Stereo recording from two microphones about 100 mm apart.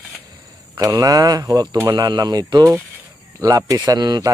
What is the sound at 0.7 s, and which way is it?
A man's voice, 35° right (ahead or behind).